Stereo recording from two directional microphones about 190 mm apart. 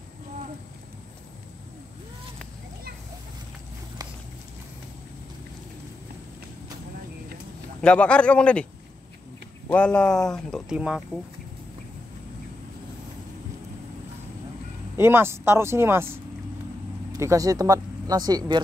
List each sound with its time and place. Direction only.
7.8 s speech: 5° left (ahead or behind)
9.7 s speech: 5° left (ahead or behind)
15.0 s speech: 10° right (ahead or behind)